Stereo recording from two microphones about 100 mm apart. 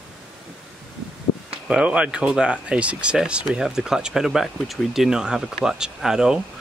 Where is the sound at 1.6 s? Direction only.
10° right (ahead or behind).